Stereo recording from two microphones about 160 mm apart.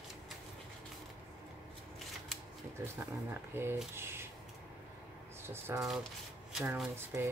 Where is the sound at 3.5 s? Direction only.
15° right (ahead or behind).